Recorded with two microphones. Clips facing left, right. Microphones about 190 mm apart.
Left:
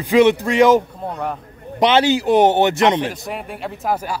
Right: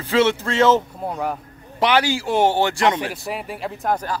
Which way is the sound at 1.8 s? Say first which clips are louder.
Left 4 dB; 20° left (ahead or behind).